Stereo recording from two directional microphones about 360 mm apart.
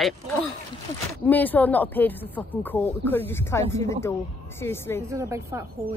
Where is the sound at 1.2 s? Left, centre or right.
Centre.